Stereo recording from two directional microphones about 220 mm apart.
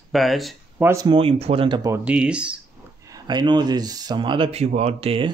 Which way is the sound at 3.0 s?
15° right (ahead or behind).